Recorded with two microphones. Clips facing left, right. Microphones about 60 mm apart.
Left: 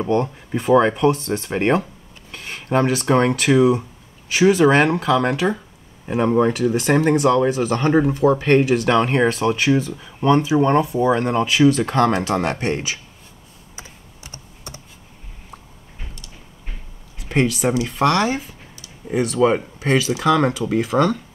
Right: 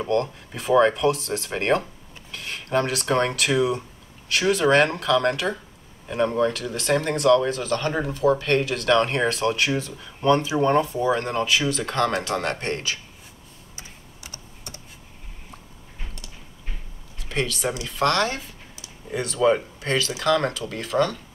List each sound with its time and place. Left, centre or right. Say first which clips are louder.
0.0 s speech: left 3 dB; centre
6.0 s speech: left 5 dB; left
13.7 s computer keyboard: left 4 dB; left
17.2 s speech: left 7 dB; centre
17.6 s speech: left 5 dB; centre